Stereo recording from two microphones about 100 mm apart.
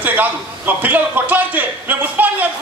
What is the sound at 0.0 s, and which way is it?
A man's voice, 15° right (ahead or behind).